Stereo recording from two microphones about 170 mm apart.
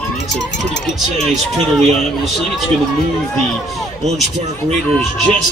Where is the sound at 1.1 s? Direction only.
40° right (ahead or behind).